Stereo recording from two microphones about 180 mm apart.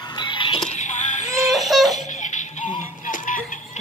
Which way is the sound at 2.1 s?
45° left (ahead or behind).